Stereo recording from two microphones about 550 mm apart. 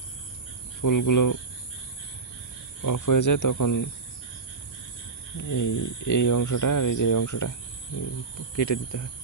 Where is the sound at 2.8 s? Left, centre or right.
Left.